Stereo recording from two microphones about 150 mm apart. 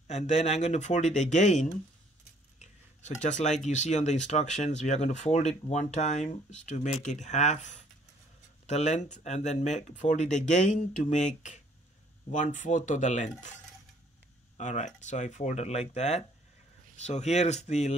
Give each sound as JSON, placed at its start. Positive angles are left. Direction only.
{"t": 0.1, "sound": "speech", "side_deg": 50}
{"t": 2.6, "sound": "a sound", "side_deg": 50}
{"t": 3.6, "sound": "speech", "side_deg": 50}
{"t": 14.6, "sound": "speech", "side_deg": 55}